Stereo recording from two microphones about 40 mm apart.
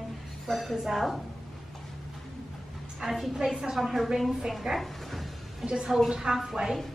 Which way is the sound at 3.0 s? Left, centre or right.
Right.